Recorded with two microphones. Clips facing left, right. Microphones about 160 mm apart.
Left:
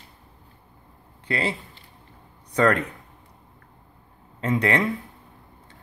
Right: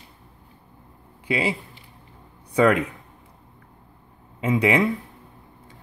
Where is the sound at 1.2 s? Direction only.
10° right (ahead or behind).